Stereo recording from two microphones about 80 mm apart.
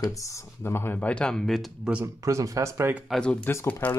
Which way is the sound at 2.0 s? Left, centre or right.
Right.